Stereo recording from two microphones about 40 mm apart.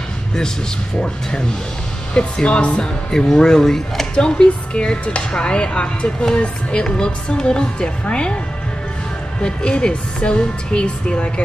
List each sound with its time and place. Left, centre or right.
0.9 s speech: centre
4.1 s speech: left
9.4 s speech: left